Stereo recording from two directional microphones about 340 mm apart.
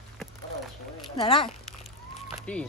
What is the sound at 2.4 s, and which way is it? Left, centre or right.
Speech, centre.